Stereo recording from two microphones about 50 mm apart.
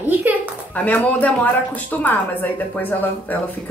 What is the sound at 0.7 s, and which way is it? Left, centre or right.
A woman's voice, left.